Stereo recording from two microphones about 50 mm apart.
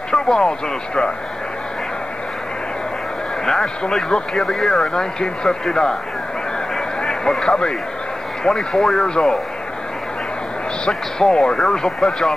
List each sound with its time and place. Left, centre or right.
0.1 s a man's voice: centre
3.4 s a man's voice: centre
6.7 s a sound: centre
8.5 s a man's voice: centre
10.9 s a man's voice: centre